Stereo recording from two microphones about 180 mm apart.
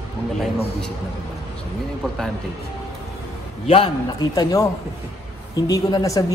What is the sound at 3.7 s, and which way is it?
Speech, 25° left (ahead or behind).